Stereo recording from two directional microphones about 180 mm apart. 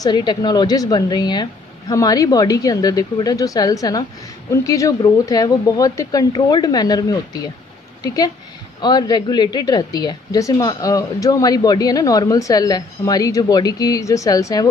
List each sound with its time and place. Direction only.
0.0 s a woman's voice: 25° left (ahead or behind)
8.8 s a woman's voice: 20° left (ahead or behind)